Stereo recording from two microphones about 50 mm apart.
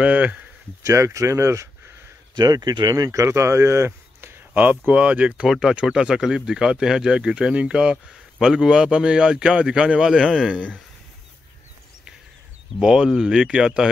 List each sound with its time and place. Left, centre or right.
0.0 s speech: right
0.8 s speech: right
3.1 s speech: right
4.6 s speech: right
5.5 s speech: centre
12.8 s speech: centre